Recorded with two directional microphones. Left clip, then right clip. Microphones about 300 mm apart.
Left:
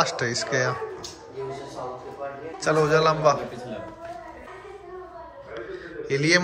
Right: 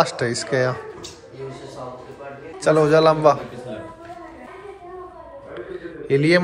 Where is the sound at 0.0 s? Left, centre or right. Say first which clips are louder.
Right 3 dB; centre.